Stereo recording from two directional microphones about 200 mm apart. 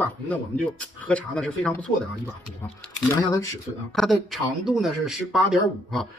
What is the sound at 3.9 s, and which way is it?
Speech, centre (ahead or behind).